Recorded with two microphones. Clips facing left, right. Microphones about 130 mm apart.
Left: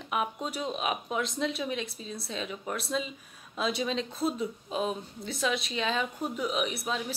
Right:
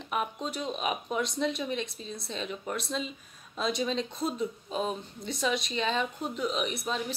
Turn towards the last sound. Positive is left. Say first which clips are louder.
# even
turn(degrees=5)  # may be behind; listen again after turning